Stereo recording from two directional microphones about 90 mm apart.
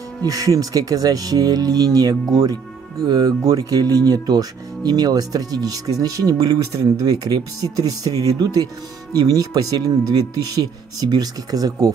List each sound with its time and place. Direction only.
0.2 s speech: 40° right (ahead or behind)